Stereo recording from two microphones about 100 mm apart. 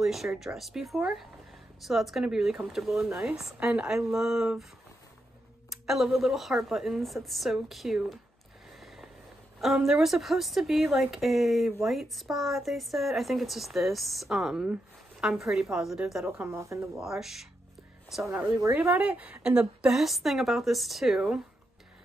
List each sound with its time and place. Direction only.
0.0 s a woman's voice: 5° right (ahead or behind)
5.7 s a woman's voice: centre (ahead or behind)
8.6 s a sound: centre (ahead or behind)
9.6 s a woman's voice: centre (ahead or behind)
16.3 s speech: 25° right (ahead or behind)
16.9 s a woman's voice: 5° right (ahead or behind)
18.6 s speech: 25° right (ahead or behind)
18.9 s a woman's voice: 10° right (ahead or behind)